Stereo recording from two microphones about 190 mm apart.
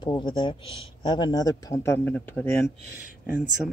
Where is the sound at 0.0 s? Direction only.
25° left (ahead or behind); by 2.7 s 5° left (ahead or behind).